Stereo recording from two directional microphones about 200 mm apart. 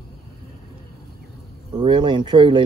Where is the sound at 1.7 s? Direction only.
25° right (ahead or behind).